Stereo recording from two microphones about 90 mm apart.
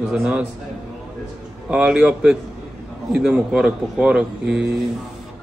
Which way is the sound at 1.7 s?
10° right (ahead or behind).